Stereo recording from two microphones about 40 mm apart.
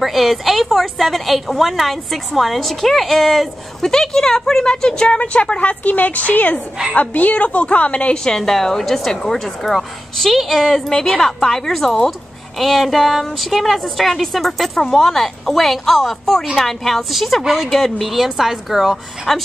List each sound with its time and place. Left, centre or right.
0.0 s a woman's voice: centre; by 5.8 s left
5.9 s a woman's voice: left
8.1 s a woman's voice: centre
8.4 s a woman's voice: centre
10.9 s a woman's voice: centre
17.7 s a woman's voice: centre
19.3 s a woman's voice: centre